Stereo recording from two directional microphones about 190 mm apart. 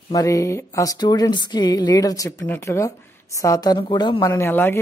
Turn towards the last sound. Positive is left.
turn(degrees=10)  # may be behind; listen again after turning